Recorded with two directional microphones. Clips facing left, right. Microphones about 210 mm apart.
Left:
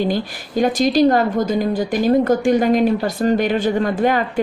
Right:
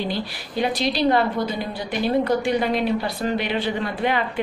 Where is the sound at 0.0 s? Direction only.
45° left (ahead or behind).